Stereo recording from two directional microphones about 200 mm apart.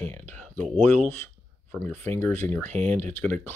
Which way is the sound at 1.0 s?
10° left (ahead or behind).